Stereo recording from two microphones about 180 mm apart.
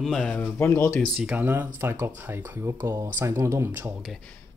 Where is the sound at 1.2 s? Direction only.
10° right (ahead or behind).